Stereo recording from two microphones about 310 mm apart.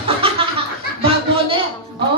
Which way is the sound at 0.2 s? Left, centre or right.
Centre.